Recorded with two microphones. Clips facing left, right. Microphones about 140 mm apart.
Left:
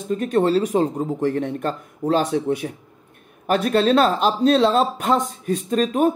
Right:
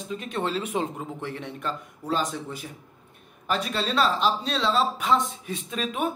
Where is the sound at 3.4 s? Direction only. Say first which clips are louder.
Left 10 dB; 50° left (ahead or behind).